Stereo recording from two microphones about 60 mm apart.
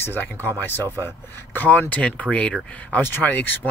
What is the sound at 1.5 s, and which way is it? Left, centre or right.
Speech, left.